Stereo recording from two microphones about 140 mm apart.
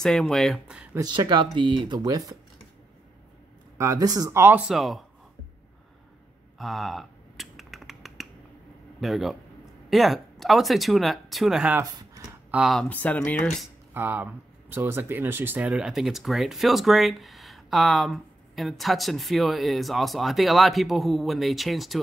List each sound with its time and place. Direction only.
0.0 s speech: 5° left (ahead or behind)
0.9 s speech: 30° right (ahead or behind)
3.7 s speech: 20° right (ahead or behind); by 5.0 s centre (ahead or behind)
6.6 s finger snapping: centre (ahead or behind)
9.0 s speech: centre (ahead or behind)
12.8 s speech: 10° left (ahead or behind)
13.9 s speech: 15° right (ahead or behind)